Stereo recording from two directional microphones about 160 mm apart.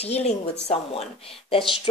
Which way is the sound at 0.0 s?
40° left (ahead or behind).